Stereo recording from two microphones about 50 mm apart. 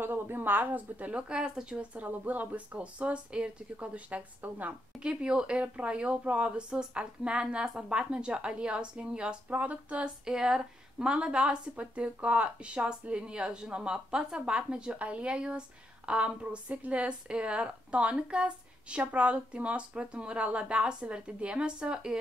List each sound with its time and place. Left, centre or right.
0.0 s speech: right
1.3 s speech: centre
2.0 s speech: right
5.0 s speech: right
9.5 s speech: right
10.0 s speech: centre